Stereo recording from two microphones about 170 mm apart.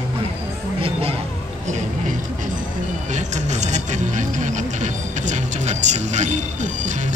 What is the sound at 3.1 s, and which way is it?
Speech, 45° right (ahead or behind).